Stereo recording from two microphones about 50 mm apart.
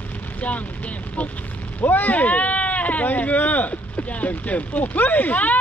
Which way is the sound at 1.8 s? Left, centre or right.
Left.